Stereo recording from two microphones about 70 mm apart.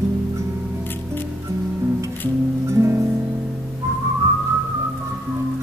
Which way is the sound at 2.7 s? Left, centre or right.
Right.